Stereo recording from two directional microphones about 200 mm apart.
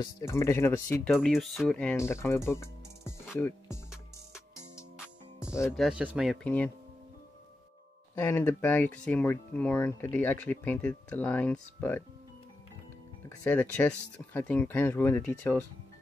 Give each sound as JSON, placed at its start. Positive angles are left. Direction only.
{"t": 0.0, "sound": "speech", "side_deg": 15}
{"t": 1.1, "sound": "speech", "side_deg": 0}
{"t": 4.9, "sound": "music", "side_deg": -5}
{"t": 5.5, "sound": "speech", "side_deg": 15}
{"t": 5.8, "sound": "speech", "side_deg": -5}
{"t": 8.1, "sound": "speech", "side_deg": 10}
{"t": 13.4, "sound": "speech", "side_deg": 10}